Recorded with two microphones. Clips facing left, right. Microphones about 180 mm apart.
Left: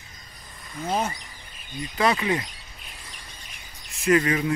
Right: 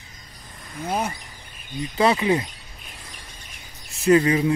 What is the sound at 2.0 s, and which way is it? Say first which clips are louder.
Speech: right 4 dB; 30° right (ahead or behind).